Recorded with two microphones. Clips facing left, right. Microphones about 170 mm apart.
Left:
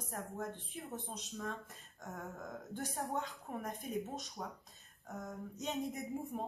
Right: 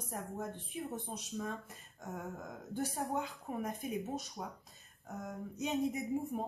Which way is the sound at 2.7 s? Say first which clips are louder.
Right 4 dB; 5° right (ahead or behind).